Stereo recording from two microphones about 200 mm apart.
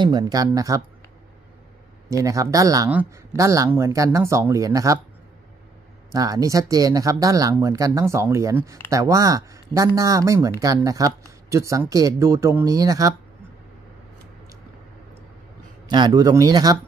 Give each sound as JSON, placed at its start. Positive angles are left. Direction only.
{"t": 0.0, "sound": "speech", "side_deg": -20}
{"t": 2.0, "sound": "speech", "side_deg": -15}
{"t": 6.1, "sound": "speech", "side_deg": -15}
{"t": 15.9, "sound": "speech", "side_deg": -20}